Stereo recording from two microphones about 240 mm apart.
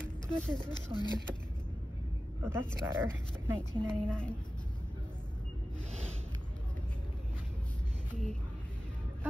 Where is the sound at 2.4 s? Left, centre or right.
Centre.